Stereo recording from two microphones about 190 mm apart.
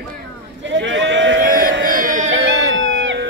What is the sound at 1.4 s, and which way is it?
Music, 50° right (ahead or behind).